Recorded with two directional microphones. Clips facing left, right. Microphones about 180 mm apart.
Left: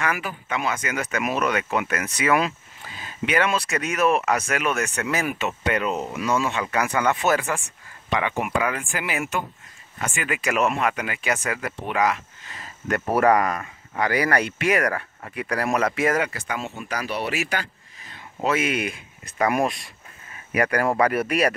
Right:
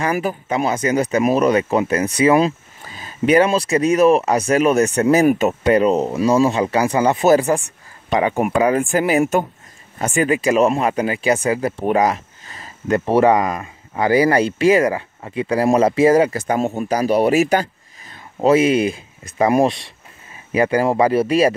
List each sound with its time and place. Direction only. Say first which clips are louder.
0.0 s speech: right 7 dB; 40° right (ahead or behind)